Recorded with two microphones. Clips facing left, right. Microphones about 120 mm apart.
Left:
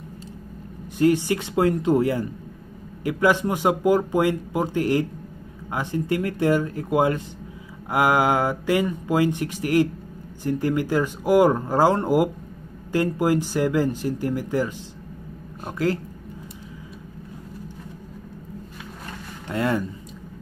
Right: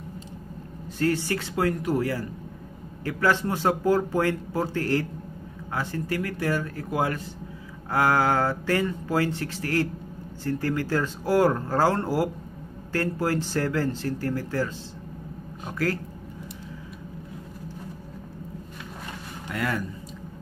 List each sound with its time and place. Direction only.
0.9 s a man's voice: 15° left (ahead or behind)
15.8 s speech: 20° left (ahead or behind)
19.5 s speech: 25° left (ahead or behind)